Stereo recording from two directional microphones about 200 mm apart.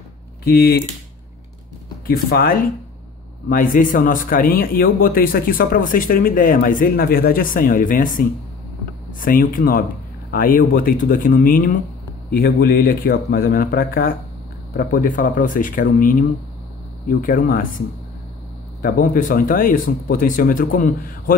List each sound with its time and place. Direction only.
0.5 s speech: 50° left (ahead or behind)
2.0 s speech: 50° left (ahead or behind)